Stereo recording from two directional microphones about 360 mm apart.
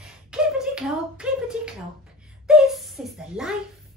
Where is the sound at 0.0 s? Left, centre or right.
Centre.